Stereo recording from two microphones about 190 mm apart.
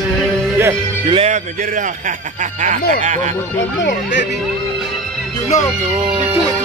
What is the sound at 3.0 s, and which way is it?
Music, 40° right (ahead or behind).